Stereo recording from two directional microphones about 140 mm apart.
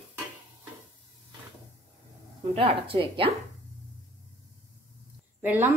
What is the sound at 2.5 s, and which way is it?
Speech, 45° right (ahead or behind).